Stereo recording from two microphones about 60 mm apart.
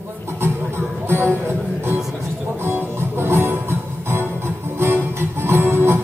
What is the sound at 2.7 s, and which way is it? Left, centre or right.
Music, right.